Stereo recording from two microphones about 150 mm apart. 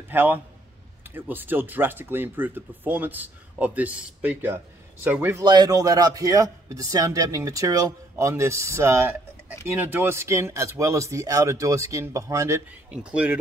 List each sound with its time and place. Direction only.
0.1 s a man's voice: 15° right (ahead or behind)
5.4 s a man's voice: 25° right (ahead or behind)
12.9 s speech: 10° right (ahead or behind)